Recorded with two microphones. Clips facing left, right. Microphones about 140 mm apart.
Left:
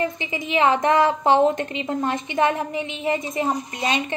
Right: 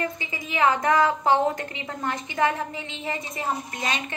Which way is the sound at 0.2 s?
20° left (ahead or behind).